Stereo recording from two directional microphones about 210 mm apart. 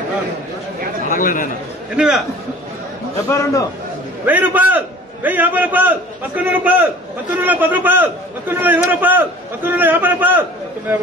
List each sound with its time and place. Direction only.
1.1 s speech: 40° left (ahead or behind)
2.0 s a man's voice: 5° right (ahead or behind)
3.3 s a man's voice: 15° left (ahead or behind)
4.3 s a man's voice: 10° right (ahead or behind)